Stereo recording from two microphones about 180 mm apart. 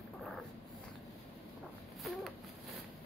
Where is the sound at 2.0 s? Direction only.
Centre (ahead or behind).